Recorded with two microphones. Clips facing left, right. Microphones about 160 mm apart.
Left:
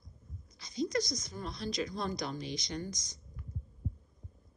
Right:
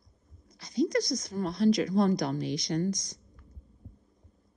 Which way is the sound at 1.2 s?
65° right (ahead or behind).